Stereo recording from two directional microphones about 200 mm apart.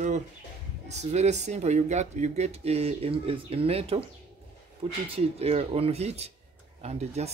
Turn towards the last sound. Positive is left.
turn(degrees=-30)  # may be behind; listen again after turning